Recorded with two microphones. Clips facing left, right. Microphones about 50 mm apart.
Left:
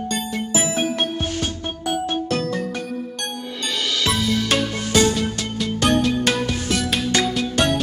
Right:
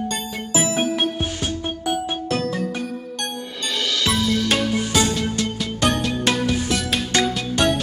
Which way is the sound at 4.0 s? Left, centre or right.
Centre.